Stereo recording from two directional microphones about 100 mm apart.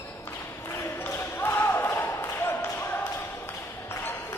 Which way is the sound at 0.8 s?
25° left (ahead or behind).